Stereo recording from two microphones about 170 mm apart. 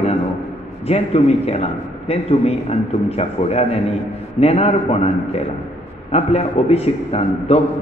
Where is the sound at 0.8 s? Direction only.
35° left (ahead or behind).